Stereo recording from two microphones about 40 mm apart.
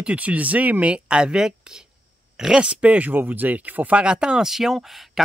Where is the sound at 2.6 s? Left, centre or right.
Right.